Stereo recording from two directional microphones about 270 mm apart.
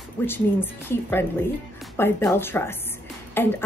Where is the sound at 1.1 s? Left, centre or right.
Centre.